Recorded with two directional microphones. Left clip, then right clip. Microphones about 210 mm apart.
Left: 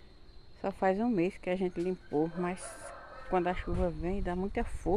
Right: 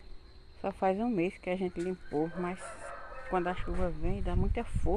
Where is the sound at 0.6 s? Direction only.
10° left (ahead or behind).